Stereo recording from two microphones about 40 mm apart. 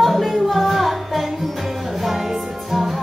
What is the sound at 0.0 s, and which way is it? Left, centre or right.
Music, centre.